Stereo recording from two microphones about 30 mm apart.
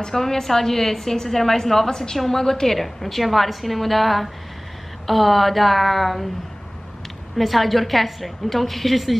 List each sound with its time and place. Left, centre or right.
0.0 s a woman's voice: centre
7.3 s a woman's voice: centre